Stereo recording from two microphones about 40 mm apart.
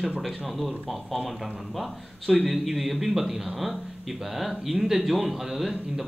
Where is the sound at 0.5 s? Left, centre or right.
Centre.